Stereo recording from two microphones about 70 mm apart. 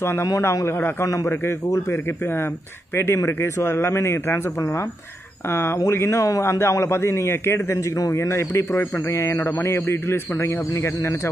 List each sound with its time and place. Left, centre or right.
0.0 s speech: left
1.0 s a man's voice: left
1.7 s a man's voice: left